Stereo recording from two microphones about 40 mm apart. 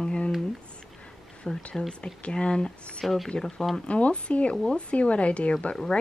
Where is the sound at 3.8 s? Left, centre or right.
Left.